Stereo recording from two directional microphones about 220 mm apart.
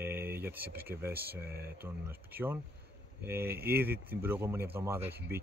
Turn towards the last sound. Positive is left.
turn(degrees=-10)  # may be behind; listen again after turning